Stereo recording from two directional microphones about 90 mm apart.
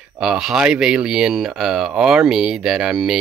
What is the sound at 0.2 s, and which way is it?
Speech, 5° right (ahead or behind).